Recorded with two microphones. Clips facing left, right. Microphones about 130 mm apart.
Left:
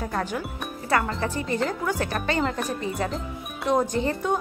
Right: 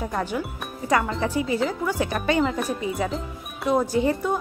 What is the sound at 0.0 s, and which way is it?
Speech, 10° right (ahead or behind).